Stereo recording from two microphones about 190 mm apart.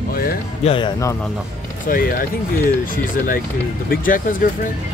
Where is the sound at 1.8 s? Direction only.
45° left (ahead or behind).